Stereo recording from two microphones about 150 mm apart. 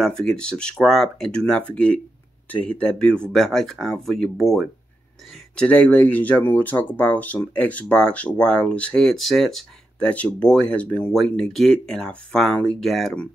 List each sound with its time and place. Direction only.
0.0 s speech: 5° left (ahead or behind)